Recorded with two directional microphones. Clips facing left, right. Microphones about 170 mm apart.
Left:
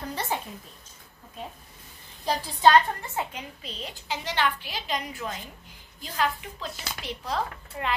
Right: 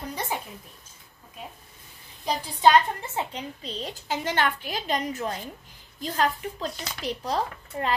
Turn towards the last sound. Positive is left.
turn(degrees=-40)  # may be behind; listen again after turning